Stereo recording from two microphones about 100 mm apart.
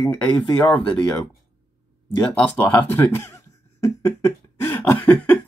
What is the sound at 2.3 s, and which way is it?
Speech, 10° left (ahead or behind).